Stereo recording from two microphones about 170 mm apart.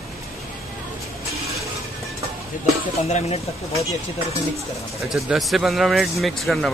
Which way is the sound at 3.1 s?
40° left (ahead or behind).